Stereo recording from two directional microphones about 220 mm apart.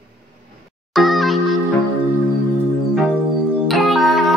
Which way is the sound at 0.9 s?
Centre (ahead or behind).